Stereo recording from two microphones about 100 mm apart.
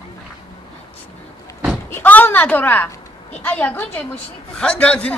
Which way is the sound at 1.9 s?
20° left (ahead or behind).